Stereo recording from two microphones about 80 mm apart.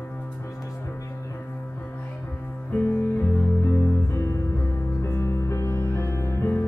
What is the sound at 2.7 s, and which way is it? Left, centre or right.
Music, left.